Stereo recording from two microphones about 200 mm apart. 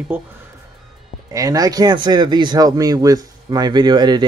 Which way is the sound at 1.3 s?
15° right (ahead or behind).